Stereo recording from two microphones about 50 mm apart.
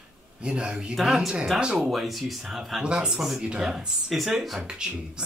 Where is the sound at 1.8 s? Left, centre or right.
Centre.